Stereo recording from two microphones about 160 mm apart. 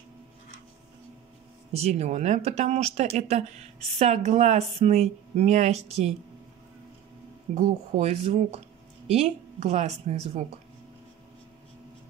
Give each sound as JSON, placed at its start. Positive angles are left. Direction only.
{"t": 1.7, "sound": "speech", "side_deg": -40}
{"t": 8.0, "sound": "speech", "side_deg": -40}